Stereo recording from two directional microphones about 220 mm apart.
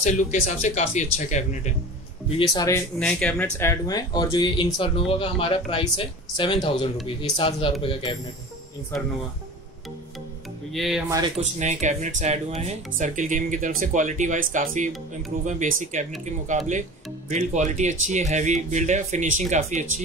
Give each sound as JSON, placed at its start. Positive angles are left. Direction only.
{"t": 0.0, "sound": "speech", "side_deg": 35}
{"t": 2.5, "sound": "speech", "side_deg": 15}
{"t": 10.7, "sound": "speech", "side_deg": 0}
{"t": 11.3, "sound": "speech", "side_deg": -30}